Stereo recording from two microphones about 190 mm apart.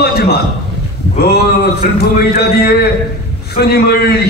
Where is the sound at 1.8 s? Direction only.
55° left (ahead or behind).